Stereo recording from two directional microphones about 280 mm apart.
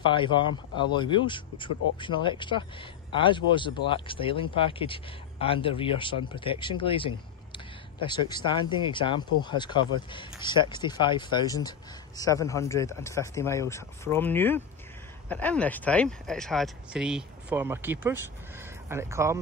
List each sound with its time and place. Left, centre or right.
0.0 s speech: centre